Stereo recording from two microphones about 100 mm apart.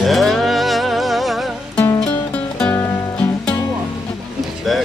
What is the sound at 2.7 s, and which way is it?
Music, 20° left (ahead or behind).